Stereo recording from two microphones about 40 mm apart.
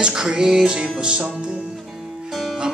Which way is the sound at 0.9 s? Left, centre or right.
Right.